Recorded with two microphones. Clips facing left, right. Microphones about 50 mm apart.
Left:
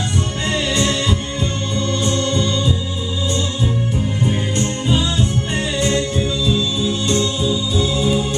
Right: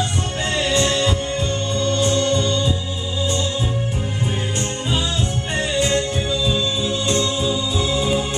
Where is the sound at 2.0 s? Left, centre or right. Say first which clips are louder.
Right 1 dB; left.